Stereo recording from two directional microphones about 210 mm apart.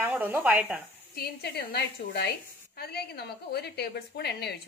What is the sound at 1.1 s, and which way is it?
A woman's voice, 50° left (ahead or behind).